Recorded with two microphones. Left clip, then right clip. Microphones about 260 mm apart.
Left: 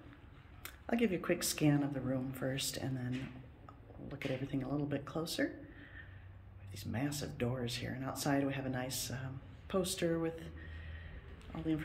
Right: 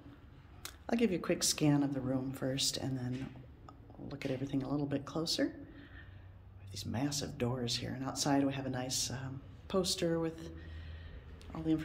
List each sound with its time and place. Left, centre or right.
0.6 s speech: centre
4.1 s a man's voice: centre
11.5 s speech: centre